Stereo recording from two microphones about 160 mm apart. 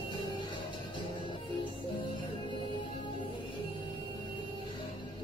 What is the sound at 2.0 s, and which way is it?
Music, 30° left (ahead or behind).